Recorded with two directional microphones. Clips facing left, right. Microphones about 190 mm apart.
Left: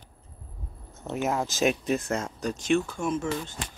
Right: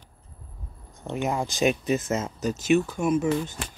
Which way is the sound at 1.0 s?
Centre (ahead or behind).